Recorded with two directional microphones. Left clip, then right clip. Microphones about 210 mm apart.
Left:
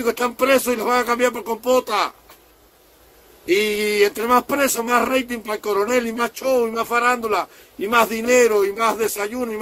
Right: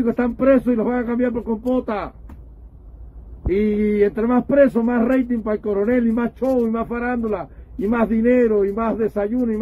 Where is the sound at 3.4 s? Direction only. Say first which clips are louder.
Left 1 dB; 15° left (ahead or behind).